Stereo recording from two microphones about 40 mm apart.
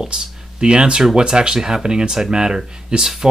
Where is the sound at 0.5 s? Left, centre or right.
Right.